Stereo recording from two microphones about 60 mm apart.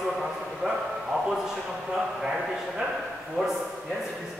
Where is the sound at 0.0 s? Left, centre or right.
Centre.